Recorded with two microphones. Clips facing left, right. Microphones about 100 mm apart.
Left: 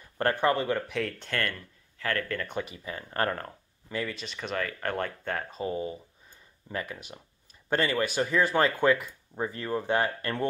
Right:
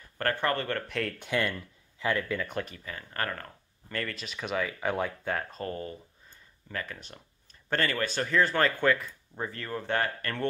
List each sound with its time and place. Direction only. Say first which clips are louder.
0.2 s speech: left 4 dB; 20° left (ahead or behind); by 1.1 s centre (ahead or behind)
1.2 s speech: right 2 dB; 10° right (ahead or behind)
2.8 s speech: left 5 dB; 25° left (ahead or behind)
3.9 s speech: left 2 dB; 5° left (ahead or behind)